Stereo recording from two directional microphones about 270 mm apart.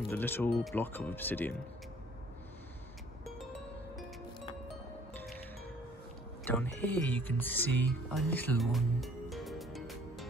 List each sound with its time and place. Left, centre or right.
0.1 s speech: centre
5.1 s music: centre
6.4 s speech: centre